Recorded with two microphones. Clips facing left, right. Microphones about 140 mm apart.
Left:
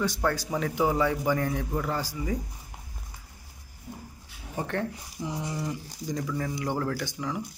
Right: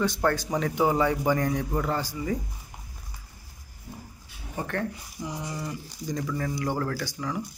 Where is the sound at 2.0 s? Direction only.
10° left (ahead or behind).